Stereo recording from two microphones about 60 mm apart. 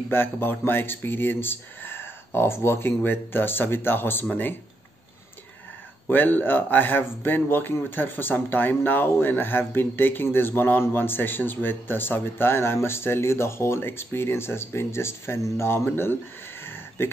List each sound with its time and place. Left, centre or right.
0.1 s speech: left
6.0 s speech: left